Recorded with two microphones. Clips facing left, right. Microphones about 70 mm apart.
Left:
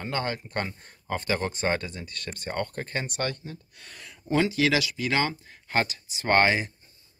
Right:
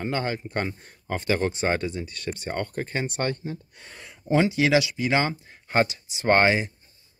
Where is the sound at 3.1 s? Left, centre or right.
Right.